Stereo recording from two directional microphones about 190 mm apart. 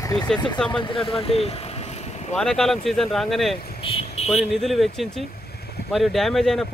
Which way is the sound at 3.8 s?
30° left (ahead or behind).